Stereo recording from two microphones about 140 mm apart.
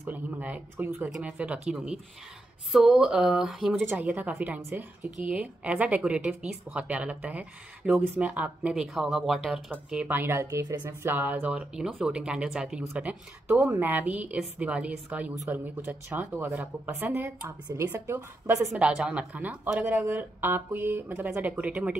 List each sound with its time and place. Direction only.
0.0 s speech: 10° right (ahead or behind)
18.9 s speech: 5° right (ahead or behind)